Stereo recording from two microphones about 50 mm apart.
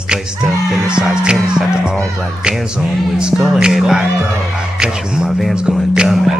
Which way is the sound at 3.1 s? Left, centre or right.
Centre.